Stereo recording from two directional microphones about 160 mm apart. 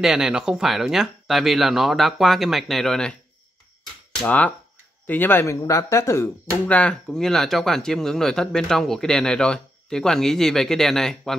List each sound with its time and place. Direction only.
0.0 s speech: 5° right (ahead or behind)
4.2 s speech: 10° left (ahead or behind)